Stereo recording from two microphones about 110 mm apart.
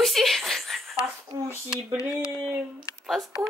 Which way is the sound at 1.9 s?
10° right (ahead or behind).